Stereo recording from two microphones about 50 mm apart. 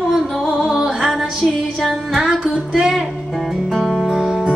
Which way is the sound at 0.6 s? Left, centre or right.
Centre.